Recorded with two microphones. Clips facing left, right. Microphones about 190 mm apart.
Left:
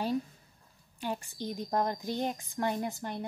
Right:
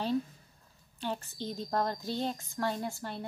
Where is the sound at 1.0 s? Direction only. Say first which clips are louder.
Left 1 dB; 15° left (ahead or behind).